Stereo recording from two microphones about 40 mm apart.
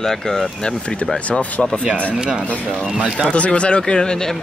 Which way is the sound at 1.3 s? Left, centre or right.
Left.